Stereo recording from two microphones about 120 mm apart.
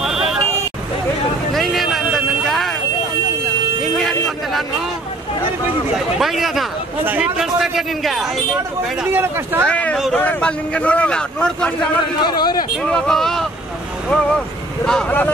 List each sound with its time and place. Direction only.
0.0 s vehicle: 5° right (ahead or behind)
1.5 s a sound: centre (ahead or behind)
3.9 s a sound: centre (ahead or behind)
5.9 s a man's voice: centre (ahead or behind)
9.1 s speech: 20° right (ahead or behind)
9.7 s speech: 10° left (ahead or behind)
12.2 s a man's voice: 35° left (ahead or behind)
12.8 s a man's voice: 5° left (ahead or behind)